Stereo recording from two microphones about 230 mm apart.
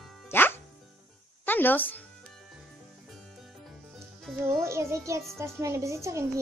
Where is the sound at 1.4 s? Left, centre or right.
Centre.